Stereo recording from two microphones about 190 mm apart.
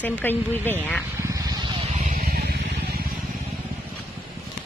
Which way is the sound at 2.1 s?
50° right (ahead or behind).